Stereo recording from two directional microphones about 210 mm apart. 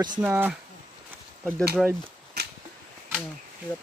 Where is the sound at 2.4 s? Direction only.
50° right (ahead or behind).